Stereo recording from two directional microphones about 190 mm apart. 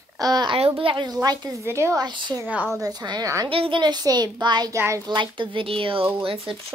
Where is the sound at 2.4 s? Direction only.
10° right (ahead or behind).